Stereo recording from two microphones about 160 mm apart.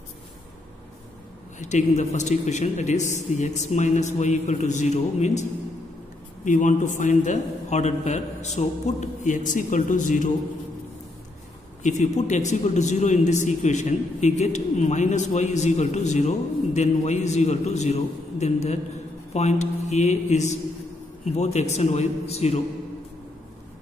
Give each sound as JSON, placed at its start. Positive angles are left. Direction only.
{"t": 1.6, "sound": "a man's voice", "side_deg": 50}
{"t": 11.8, "sound": "a man's voice", "side_deg": 45}